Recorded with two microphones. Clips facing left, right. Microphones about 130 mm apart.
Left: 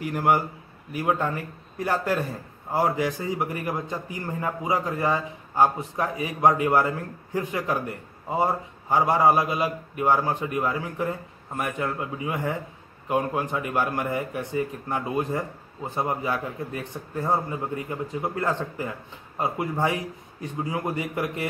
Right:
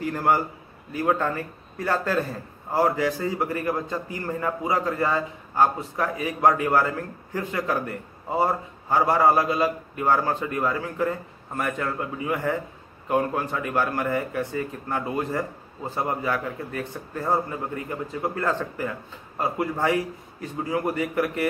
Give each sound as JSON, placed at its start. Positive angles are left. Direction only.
{"t": 0.0, "sound": "a man's voice", "side_deg": 15}